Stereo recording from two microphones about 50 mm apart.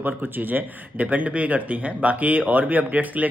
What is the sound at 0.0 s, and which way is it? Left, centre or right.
Speech, right.